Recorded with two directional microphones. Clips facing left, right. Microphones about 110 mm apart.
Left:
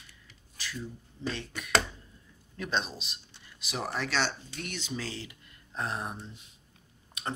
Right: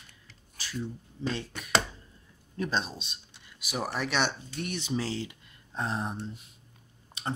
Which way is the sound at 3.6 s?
10° right (ahead or behind).